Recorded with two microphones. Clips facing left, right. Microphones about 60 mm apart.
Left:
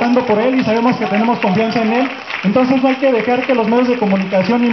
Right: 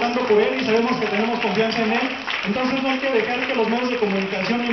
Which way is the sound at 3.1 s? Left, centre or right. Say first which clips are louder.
Left 8 dB; left.